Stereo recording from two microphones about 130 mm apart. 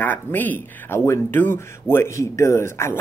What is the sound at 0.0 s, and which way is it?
Speech, 15° left (ahead or behind).